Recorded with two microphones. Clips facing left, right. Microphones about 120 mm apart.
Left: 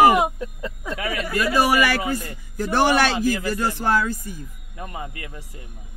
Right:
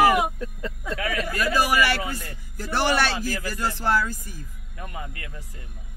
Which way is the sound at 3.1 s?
20° left (ahead or behind).